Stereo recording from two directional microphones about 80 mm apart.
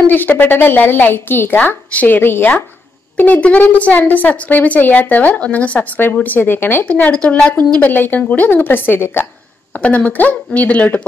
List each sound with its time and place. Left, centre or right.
0.0 s a woman's voice: left
6.9 s a woman's voice: centre
9.8 s a woman's voice: centre